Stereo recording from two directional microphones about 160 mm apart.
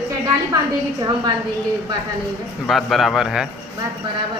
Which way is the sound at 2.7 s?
Centre (ahead or behind).